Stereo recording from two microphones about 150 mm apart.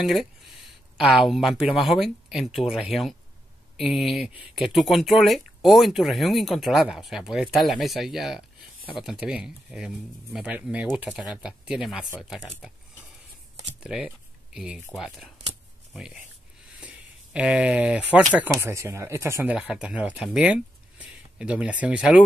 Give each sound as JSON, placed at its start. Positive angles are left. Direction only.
{"t": 0.0, "sound": "speech", "side_deg": 0}
{"t": 13.7, "sound": "speech", "side_deg": -5}
{"t": 19.5, "sound": "speech", "side_deg": -5}